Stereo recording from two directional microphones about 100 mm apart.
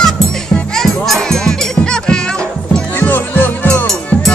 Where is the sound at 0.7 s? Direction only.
5° left (ahead or behind).